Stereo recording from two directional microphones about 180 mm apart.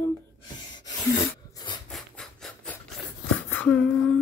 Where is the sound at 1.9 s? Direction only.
Centre (ahead or behind).